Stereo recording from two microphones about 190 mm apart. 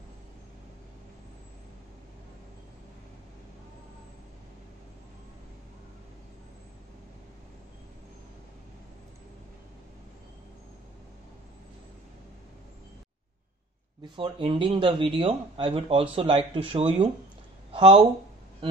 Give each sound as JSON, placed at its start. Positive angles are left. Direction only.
{"t": 14.1, "sound": "speech", "side_deg": -25}